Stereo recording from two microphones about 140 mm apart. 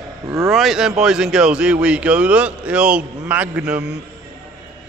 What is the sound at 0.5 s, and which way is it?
Speech, centre (ahead or behind).